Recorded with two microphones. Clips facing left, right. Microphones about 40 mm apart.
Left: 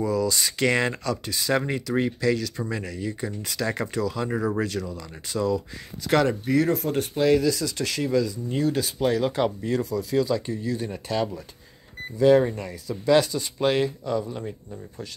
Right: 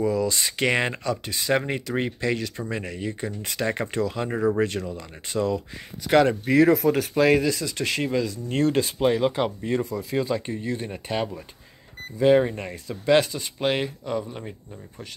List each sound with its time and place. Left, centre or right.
0.0 s speech: centre
6.6 s speech: right
7.3 s speech: right
8.5 s speech: right
8.7 s speech: right
9.0 s speech: right
9.3 s speech: centre
9.9 s speech: right
10.9 s speech: right